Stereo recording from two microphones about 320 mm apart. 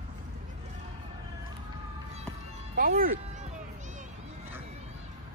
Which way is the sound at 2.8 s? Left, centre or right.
Right.